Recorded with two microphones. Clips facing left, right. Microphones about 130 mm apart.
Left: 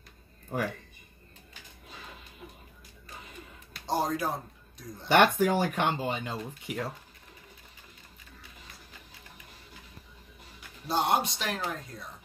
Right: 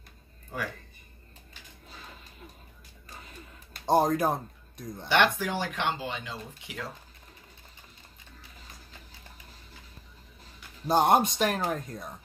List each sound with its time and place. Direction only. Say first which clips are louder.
3.7 s speech: right 6 dB; 50° right (ahead or behind)
5.0 s speech: left 3 dB; 50° left (ahead or behind)
10.9 s speech: right 5 dB; 50° right (ahead or behind)